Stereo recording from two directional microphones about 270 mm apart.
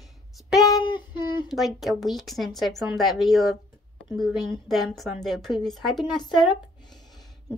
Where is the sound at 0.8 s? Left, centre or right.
Centre.